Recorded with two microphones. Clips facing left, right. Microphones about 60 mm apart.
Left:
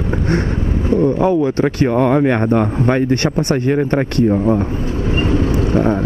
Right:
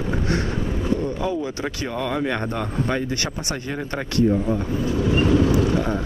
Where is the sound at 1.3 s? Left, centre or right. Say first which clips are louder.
Left 11 dB; left.